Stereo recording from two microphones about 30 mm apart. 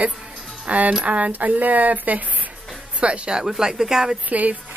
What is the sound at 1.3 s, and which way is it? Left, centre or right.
Speech, right.